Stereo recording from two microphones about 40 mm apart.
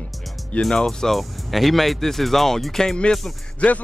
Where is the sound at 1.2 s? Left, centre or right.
Centre.